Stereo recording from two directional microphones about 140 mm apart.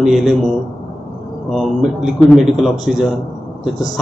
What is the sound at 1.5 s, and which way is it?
A man's voice, centre (ahead or behind).